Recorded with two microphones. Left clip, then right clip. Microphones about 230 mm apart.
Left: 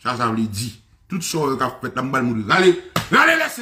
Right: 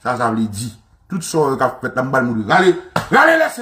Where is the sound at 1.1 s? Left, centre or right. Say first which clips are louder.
Right 5 dB; left.